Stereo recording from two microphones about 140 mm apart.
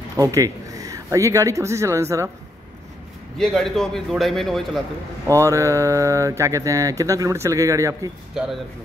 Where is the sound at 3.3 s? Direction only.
Centre (ahead or behind).